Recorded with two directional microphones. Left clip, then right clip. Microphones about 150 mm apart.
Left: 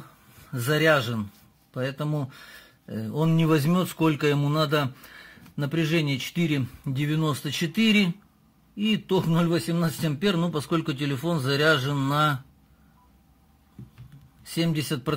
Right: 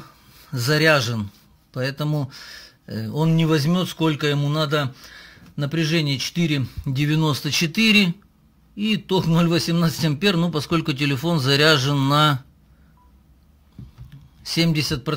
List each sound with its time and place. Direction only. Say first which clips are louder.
0.0 s a man's voice: right 4 dB; 15° right (ahead or behind)
6.9 s speech: right 5 dB; 20° right (ahead or behind)
9.4 s speech: right 5 dB; 25° right (ahead or behind)
14.5 s speech: right 6 dB; 25° right (ahead or behind)
14.8 s speech: right 4 dB; 5° right (ahead or behind)